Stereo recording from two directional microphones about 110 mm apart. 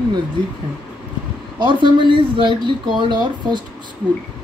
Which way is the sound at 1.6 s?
45° right (ahead or behind).